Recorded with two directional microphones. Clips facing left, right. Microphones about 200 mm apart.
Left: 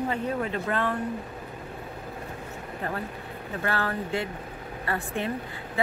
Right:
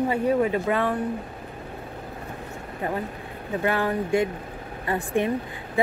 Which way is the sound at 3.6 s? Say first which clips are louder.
Right 5 dB; 15° right (ahead or behind).